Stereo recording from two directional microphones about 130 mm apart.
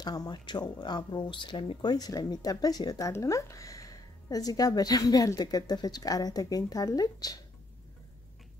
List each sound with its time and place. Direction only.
0.0 s speech: 30° left (ahead or behind)